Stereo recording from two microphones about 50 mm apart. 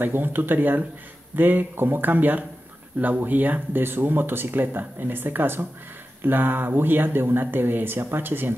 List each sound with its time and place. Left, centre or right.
0.0 s speech: right